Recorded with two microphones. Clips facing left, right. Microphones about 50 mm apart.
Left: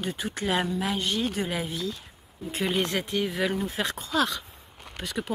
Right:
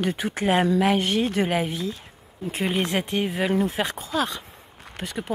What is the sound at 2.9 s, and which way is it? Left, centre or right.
Speech, right.